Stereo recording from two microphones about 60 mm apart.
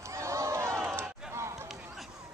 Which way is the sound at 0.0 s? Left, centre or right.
Right.